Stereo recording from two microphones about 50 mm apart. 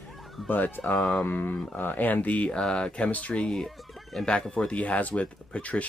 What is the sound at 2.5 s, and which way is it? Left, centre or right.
Speech, centre.